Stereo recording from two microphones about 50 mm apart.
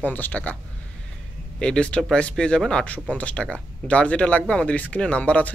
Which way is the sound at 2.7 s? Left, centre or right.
Left.